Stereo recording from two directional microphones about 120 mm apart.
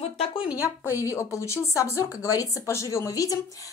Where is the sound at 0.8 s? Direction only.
25° left (ahead or behind).